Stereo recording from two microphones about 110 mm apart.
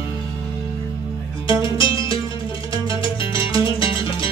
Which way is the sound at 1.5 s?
50° left (ahead or behind).